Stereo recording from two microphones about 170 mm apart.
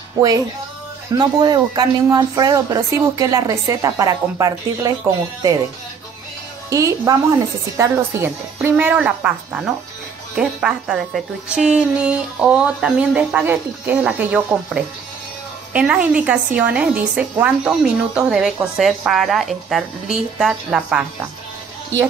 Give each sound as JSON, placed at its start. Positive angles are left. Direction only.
{"t": 1.1, "sound": "speech", "side_deg": -25}
{"t": 6.7, "sound": "a woman's voice", "side_deg": -20}